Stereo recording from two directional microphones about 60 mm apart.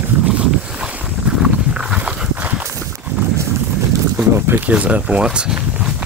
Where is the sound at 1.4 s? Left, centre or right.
Centre.